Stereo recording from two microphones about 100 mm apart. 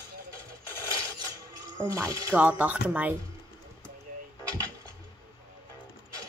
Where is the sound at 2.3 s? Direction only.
15° right (ahead or behind).